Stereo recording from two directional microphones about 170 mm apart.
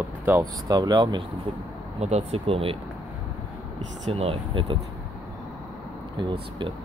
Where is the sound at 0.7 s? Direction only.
25° right (ahead or behind).